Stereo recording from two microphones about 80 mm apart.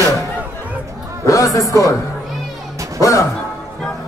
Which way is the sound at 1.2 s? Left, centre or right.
Left.